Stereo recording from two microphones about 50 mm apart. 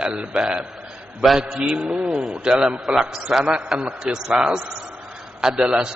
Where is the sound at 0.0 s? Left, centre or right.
Centre.